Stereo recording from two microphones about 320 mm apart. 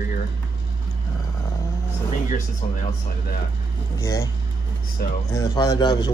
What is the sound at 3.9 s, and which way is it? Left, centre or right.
Speech, centre.